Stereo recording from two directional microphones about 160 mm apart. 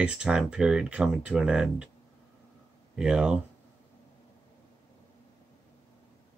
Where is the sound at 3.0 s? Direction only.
5° right (ahead or behind).